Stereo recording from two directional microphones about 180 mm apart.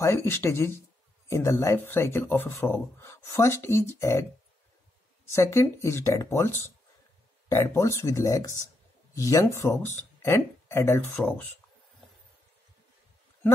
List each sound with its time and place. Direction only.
0.0 s speech: 15° left (ahead or behind)
5.3 s speech: 15° left (ahead or behind)